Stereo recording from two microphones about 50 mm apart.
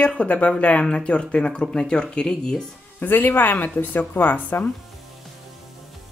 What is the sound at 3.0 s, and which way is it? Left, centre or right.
Speech, left.